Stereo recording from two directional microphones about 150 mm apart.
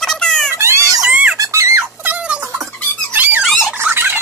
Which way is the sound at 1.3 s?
20° right (ahead or behind).